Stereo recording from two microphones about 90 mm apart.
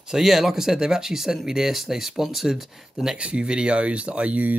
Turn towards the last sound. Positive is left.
turn(degrees=-15)  # may be behind; listen again after turning